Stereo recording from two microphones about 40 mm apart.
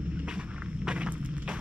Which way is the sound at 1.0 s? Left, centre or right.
Right.